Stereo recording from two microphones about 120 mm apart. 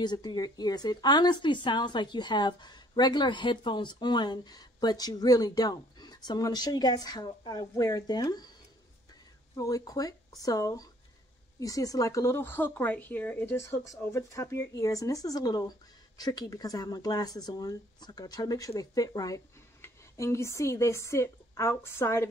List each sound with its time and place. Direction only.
0.0 s speech: 35° left (ahead or behind)
9.6 s speech: 30° left (ahead or behind)